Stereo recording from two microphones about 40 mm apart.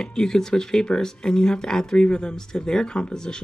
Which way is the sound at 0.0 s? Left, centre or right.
Centre.